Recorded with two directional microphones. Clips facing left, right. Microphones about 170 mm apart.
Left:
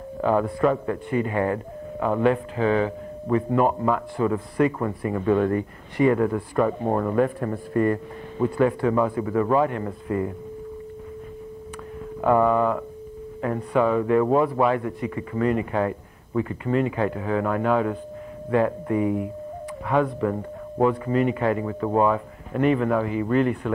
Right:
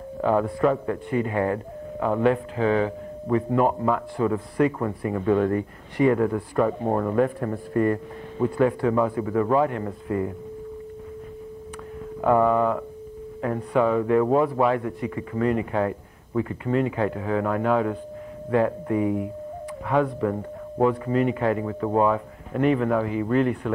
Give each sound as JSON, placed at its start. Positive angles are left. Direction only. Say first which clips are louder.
{"t": 0.2, "sound": "speech", "louder": "even", "side_deg": -35}
{"t": 12.2, "sound": "speech", "louder": "even", "side_deg": -35}